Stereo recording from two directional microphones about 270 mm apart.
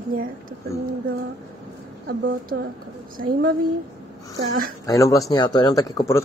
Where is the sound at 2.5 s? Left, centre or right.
Right.